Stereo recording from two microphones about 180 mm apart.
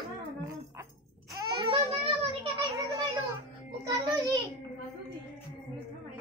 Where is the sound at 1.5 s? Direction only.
30° right (ahead or behind).